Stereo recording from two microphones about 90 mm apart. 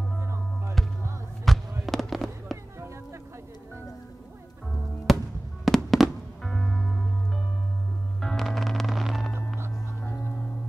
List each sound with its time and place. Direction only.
0.2 s music: 30° right (ahead or behind)
1.4 s fireworks: centre (ahead or behind)
5.1 s music: centre (ahead or behind)
5.7 s fireworks: centre (ahead or behind)
8.2 s music: 5° left (ahead or behind)